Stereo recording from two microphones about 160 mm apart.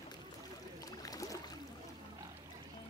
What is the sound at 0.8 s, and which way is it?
Boat, 20° left (ahead or behind).